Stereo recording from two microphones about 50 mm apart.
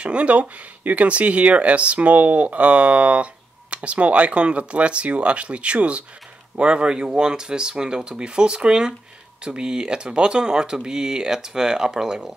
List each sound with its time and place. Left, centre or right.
0.0 s speech: right